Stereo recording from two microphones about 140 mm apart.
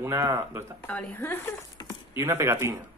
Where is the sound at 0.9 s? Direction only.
10° left (ahead or behind).